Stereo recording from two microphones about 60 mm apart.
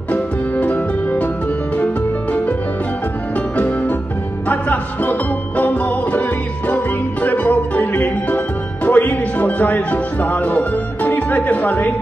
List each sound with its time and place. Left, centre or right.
0.1 s music: left
3.5 s music: left